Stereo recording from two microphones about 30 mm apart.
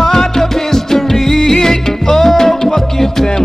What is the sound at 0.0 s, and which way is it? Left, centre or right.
Music, centre.